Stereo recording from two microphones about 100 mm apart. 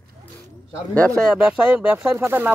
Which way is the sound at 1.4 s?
10° right (ahead or behind).